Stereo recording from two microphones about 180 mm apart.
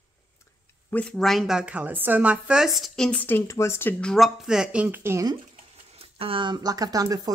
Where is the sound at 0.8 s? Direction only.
5° left (ahead or behind); by 5.3 s 15° right (ahead or behind).